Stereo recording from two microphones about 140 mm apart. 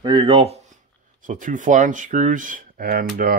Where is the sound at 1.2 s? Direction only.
65° right (ahead or behind).